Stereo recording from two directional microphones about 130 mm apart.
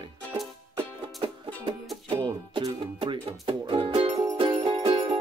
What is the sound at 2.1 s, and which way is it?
Music, 40° right (ahead or behind).